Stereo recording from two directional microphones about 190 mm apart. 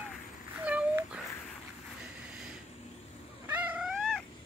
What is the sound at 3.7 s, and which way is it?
Dog, centre (ahead or behind).